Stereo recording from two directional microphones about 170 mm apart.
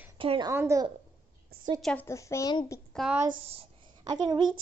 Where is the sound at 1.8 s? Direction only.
10° left (ahead or behind).